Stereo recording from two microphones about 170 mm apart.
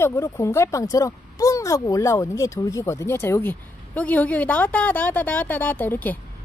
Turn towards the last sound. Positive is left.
turn(degrees=10)  # may be behind; listen again after turning